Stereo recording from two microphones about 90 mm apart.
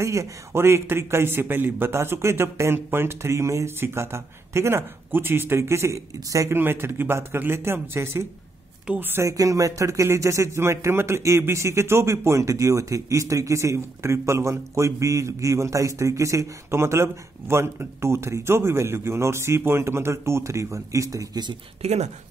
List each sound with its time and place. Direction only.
0.0 s a man's voice: 35° right (ahead or behind)
6.5 s a man's voice: 25° right (ahead or behind)
8.8 s speech: 15° right (ahead or behind)
9.1 s speech: 35° right (ahead or behind)